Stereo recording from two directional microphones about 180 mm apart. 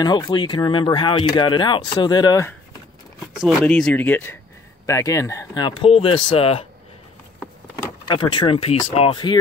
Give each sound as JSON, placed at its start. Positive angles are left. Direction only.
{"t": 0.0, "sound": "speech", "side_deg": 25}
{"t": 3.3, "sound": "speech", "side_deg": 0}
{"t": 8.1, "sound": "speech", "side_deg": 25}